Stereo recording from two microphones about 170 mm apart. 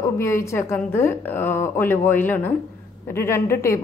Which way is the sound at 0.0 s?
15° left (ahead or behind).